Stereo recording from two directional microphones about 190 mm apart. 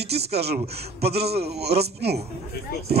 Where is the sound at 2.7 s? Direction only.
55° left (ahead or behind).